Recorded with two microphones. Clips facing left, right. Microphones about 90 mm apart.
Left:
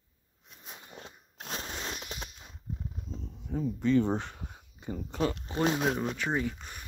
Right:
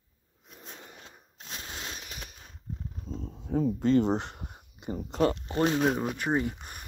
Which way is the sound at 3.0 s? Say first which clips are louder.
Right 4 dB; 40° right (ahead or behind).